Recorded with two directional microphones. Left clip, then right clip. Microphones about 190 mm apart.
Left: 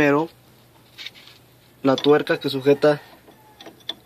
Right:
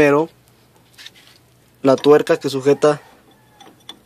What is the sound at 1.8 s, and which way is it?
Speech, 45° right (ahead or behind).